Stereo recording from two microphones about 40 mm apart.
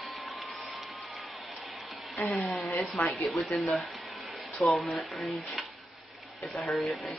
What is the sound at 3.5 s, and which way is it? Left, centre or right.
Speech, left.